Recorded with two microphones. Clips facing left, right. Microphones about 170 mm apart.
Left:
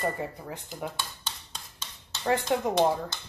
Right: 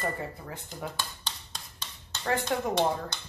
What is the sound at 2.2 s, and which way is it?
Speech, 20° left (ahead or behind).